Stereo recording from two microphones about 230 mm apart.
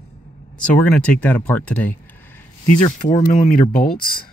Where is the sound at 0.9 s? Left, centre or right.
Centre.